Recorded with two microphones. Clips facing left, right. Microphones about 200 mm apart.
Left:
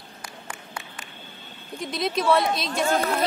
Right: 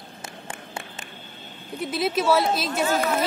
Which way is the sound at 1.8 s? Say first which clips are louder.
Right 2 dB; 5° right (ahead or behind).